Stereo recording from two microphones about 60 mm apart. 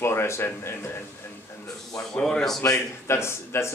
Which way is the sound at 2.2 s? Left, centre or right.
Centre.